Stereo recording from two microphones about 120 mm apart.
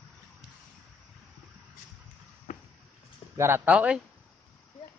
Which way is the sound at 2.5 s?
90° left.